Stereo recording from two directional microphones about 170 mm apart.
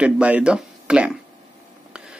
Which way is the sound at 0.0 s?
5° right (ahead or behind).